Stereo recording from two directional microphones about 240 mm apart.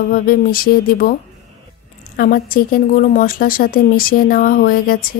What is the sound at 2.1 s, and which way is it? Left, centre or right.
A woman's voice, left.